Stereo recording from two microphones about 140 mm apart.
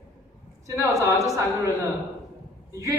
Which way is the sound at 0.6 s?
20° right (ahead or behind).